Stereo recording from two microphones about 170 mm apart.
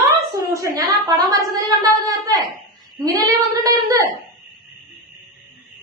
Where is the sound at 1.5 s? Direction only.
20° right (ahead or behind).